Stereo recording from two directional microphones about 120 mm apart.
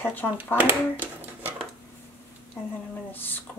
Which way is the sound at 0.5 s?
15° right (ahead or behind).